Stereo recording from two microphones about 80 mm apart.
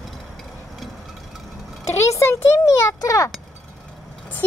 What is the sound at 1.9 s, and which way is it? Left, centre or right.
A child's voice, left.